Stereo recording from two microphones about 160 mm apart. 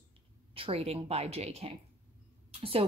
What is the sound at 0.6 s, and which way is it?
A woman's voice, 40° right (ahead or behind).